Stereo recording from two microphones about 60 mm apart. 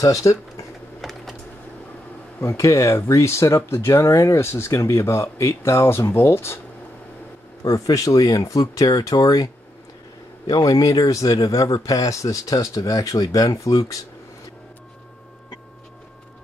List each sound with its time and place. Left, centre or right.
0.0 s speech: left
2.4 s speech: left
7.6 s speech: left
10.4 s speech: left